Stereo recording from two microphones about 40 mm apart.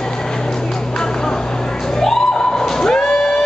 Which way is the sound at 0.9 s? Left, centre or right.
Centre.